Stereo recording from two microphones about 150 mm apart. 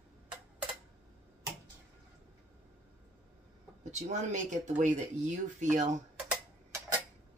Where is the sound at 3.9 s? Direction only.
50° right (ahead or behind).